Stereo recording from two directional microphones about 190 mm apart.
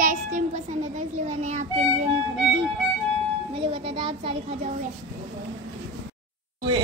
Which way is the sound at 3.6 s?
30° right (ahead or behind).